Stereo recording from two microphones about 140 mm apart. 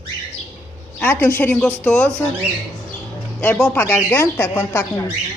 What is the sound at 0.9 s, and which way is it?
Speech, 15° left (ahead or behind).